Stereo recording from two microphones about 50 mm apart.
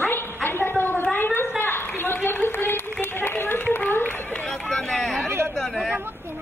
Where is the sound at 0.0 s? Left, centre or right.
Left.